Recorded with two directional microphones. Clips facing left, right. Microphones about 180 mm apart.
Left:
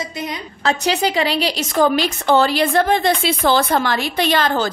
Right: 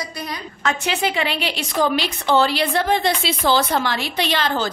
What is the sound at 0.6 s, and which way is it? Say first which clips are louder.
A woman's voice: left 4 dB; 35° left (ahead or behind).